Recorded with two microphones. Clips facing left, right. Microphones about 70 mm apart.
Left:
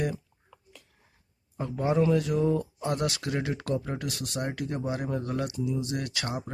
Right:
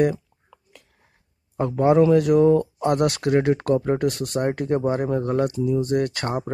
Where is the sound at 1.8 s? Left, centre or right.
Right.